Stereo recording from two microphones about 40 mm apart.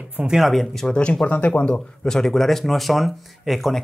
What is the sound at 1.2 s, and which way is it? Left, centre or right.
Speech, left.